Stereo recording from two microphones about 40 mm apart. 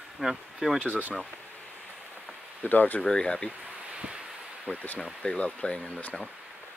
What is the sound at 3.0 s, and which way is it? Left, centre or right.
Speech, left.